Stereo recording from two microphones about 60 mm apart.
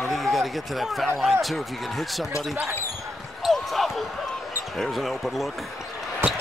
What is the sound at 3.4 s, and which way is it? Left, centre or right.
Basketball bounce, centre.